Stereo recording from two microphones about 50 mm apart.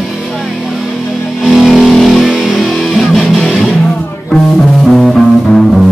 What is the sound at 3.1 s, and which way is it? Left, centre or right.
Music, centre.